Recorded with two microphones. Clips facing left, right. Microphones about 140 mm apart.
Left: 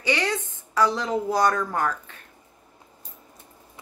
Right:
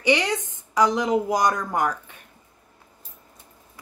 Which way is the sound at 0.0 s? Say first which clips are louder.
Right 3 dB; 15° right (ahead or behind).